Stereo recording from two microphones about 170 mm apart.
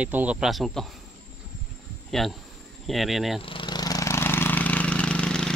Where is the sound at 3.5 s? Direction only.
25° left (ahead or behind).